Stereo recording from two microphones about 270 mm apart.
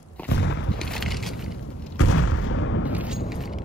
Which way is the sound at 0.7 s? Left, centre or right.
Centre.